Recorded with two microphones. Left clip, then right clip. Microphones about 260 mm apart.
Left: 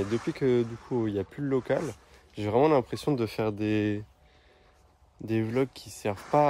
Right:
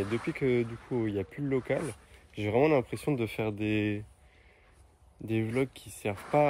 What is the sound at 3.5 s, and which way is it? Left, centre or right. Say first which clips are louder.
Speech: left 3 dB; left.